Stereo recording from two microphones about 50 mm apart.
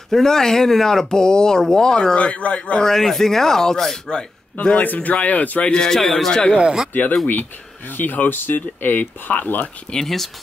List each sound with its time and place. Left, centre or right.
0.1 s speech: centre
2.1 s speech: left
2.8 s speech: centre
4.8 s speech: left
5.7 s speech: centre
6.5 s speech: centre
6.9 s speech: left
9.8 s speech: centre